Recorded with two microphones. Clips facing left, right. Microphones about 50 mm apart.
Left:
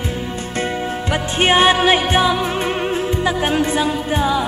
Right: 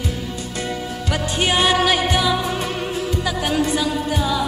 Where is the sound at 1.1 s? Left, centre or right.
Left.